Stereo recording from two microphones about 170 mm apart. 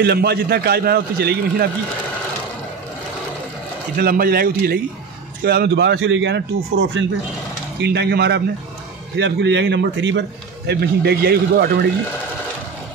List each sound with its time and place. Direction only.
0.0 s a man's voice: 70° right (ahead or behind)
4.0 s a man's voice: 60° right (ahead or behind); by 7.1 s 90° right
7.8 s a man's voice: 75° right (ahead or behind)
9.1 s a man's voice: 90° right
10.7 s a man's voice: 75° right (ahead or behind)